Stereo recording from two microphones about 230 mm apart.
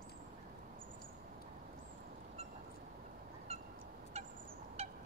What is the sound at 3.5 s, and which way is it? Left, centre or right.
Fowl, right.